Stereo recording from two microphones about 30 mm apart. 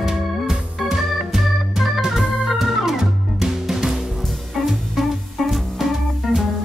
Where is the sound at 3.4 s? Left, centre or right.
Centre.